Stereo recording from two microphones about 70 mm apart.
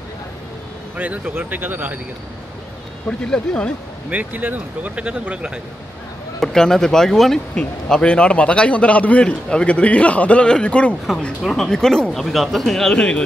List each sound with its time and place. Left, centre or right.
0.9 s speech: right
3.1 s a man's voice: centre
4.1 s speech: right
6.4 s a man's voice: centre
7.5 s a man's voice: centre
11.4 s speech: centre